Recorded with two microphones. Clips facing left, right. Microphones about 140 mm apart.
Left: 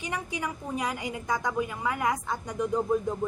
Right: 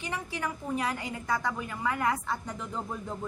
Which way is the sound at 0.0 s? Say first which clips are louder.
Left 1 dB; 15° left (ahead or behind).